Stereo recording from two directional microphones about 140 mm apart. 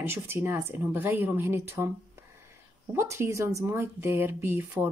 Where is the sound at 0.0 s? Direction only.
15° right (ahead or behind).